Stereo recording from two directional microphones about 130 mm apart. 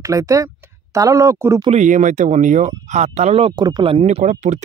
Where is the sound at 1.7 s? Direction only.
70° right (ahead or behind).